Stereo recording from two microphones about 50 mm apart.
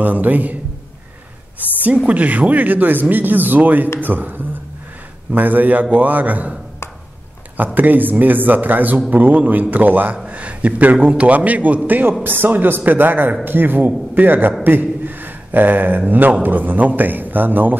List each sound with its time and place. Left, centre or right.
0.0 s speech: right
2.0 s speech: right
7.5 s speech: right
10.1 s a sound: right
11.1 s speech: right
11.9 s speech: right
14.6 s a sound: right
16.1 s speech: right